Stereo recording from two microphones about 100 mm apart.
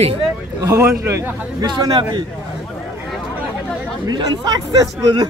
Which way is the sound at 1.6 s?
45° right (ahead or behind).